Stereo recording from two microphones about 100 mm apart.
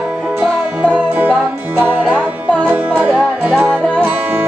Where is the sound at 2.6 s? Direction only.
15° right (ahead or behind).